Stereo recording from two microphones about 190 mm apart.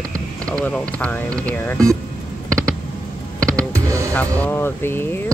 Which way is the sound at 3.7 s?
15° right (ahead or behind).